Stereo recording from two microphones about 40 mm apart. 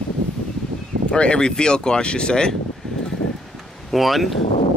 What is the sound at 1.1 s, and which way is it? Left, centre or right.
Speech, left.